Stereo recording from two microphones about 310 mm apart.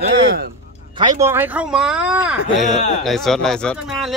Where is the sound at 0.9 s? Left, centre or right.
Centre.